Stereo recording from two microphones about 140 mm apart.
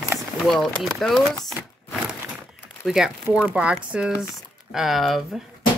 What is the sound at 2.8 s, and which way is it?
Speech, centre (ahead or behind).